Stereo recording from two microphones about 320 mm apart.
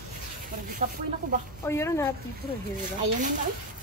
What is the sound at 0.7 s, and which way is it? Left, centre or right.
Speech, right.